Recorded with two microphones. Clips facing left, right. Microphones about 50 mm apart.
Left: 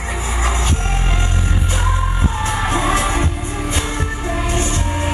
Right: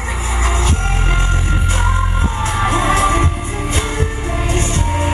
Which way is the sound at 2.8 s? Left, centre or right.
Right.